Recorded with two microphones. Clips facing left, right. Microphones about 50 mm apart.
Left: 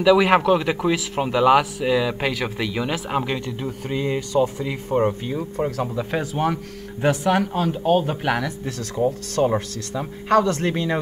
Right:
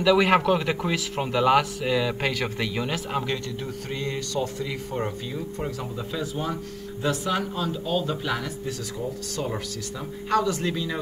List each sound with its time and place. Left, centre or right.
0.0 s speech: centre; by 4.9 s left
5.7 s speech: left
6.1 s speech: left
10.3 s speech: left